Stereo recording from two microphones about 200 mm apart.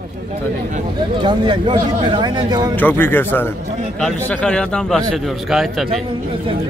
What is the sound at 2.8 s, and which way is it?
A man's voice, 10° left (ahead or behind).